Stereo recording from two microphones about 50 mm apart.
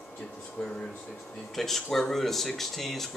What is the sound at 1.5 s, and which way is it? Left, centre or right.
Speech, centre.